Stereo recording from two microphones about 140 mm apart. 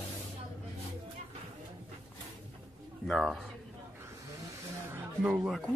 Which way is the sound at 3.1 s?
Centre (ahead or behind).